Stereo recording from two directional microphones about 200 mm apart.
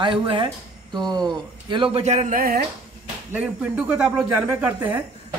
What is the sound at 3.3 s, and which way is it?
Speech, 10° right (ahead or behind).